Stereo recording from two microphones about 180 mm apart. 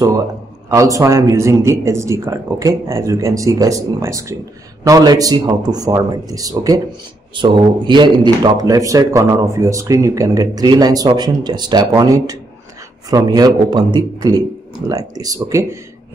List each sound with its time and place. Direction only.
0.7 s a man's voice: 20° right (ahead or behind)